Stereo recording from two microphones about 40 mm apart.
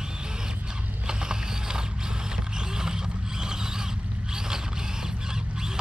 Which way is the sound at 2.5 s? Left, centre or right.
Centre.